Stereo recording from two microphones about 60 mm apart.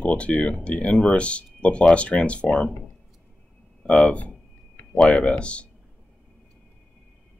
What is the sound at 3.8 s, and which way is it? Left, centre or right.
Speech, left.